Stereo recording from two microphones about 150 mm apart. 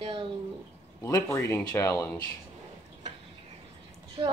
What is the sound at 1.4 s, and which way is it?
Speech, 25° left (ahead or behind).